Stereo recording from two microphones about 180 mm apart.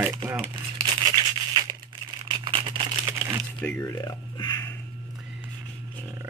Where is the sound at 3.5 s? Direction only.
10° left (ahead or behind).